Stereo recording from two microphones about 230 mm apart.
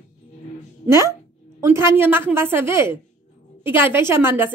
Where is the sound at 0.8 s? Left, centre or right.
Centre.